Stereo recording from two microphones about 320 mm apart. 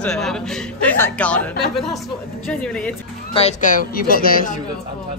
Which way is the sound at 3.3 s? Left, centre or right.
Left.